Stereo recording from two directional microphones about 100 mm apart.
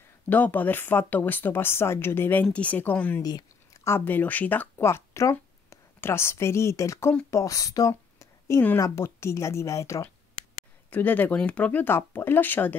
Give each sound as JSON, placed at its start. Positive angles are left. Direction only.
{"t": 0.3, "sound": "speech", "side_deg": 20}
{"t": 3.2, "sound": "a sound", "side_deg": 40}
{"t": 3.8, "sound": "speech", "side_deg": 20}
{"t": 10.9, "sound": "speech", "side_deg": 20}